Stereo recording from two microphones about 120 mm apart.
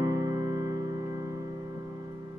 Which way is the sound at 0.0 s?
35° right (ahead or behind).